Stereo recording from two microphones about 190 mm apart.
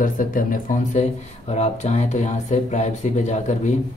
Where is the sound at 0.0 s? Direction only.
45° left (ahead or behind).